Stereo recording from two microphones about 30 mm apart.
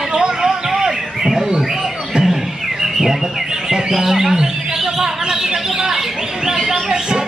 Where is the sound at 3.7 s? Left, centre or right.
Centre.